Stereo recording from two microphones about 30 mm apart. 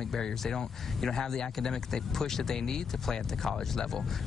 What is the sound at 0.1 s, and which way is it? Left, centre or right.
Speech, centre.